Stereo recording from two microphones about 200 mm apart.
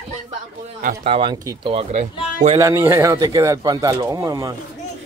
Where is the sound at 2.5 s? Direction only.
15° right (ahead or behind).